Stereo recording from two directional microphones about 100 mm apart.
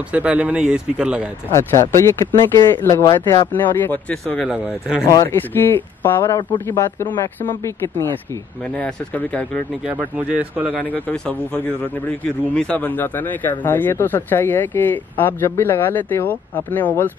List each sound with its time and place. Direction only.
0.1 s speech: 15° right (ahead or behind)
1.5 s a man's voice: 30° left (ahead or behind)
3.6 s a man's voice: 20° left (ahead or behind)
4.1 s speech: 10° left (ahead or behind)
4.5 s speech: 5° right (ahead or behind)
5.0 s a man's voice: 30° left (ahead or behind)
7.4 s a man's voice: 25° left (ahead or behind)
8.7 s speech: 15° left (ahead or behind)
9.8 s speech: 10° right (ahead or behind)
10.9 s a man's voice: 10° left (ahead or behind)